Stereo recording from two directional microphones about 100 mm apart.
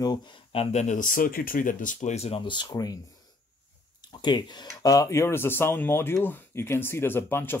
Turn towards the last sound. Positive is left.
turn(degrees=25)  # may be behind; listen again after turning